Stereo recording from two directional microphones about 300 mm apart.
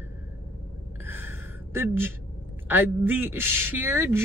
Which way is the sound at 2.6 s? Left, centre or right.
Centre.